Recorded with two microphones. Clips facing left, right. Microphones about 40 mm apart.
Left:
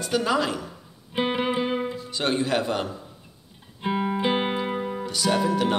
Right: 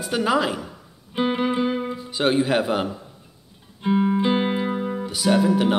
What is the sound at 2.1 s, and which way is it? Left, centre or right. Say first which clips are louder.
Speech: right 5 dB; centre.